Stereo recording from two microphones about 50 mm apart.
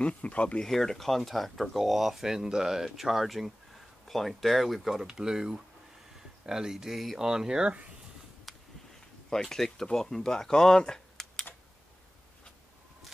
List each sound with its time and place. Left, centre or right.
0.0 s speech: left
0.6 s speech: centre
5.0 s speech: centre
8.5 s a sound: centre
9.3 s speech: centre